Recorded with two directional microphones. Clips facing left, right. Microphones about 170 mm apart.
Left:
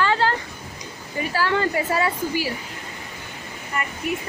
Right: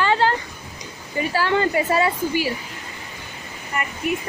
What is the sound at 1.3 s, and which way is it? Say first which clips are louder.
A woman's voice: right 2 dB; 20° right (ahead or behind).